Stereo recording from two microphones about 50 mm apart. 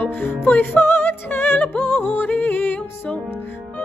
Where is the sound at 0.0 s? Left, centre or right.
Left.